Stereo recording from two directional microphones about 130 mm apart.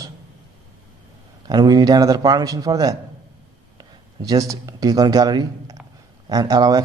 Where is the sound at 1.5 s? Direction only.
30° right (ahead or behind).